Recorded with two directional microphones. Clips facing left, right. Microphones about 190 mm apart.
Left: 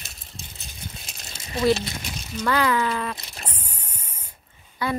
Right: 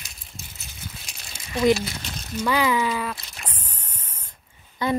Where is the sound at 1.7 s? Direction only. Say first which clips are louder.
Right 1 dB; 25° left (ahead or behind).